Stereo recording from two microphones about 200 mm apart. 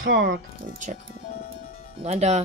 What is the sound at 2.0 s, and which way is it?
Speech, 30° right (ahead or behind).